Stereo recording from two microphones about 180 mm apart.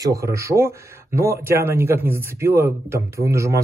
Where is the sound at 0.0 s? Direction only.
20° right (ahead or behind).